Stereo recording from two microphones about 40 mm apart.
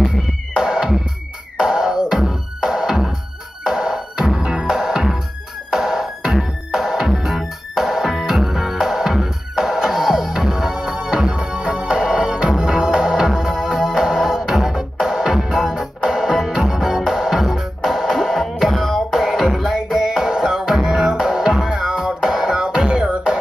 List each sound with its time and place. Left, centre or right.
0.6 s music: centre
10.8 s music: right; by 19.0 s centre
19.0 s music: centre